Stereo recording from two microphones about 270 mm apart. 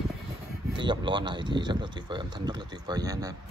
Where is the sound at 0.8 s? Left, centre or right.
Centre.